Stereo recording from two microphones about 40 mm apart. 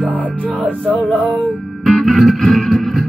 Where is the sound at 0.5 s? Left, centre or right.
Right.